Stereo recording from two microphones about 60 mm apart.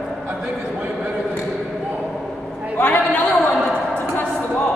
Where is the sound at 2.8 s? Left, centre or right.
Left.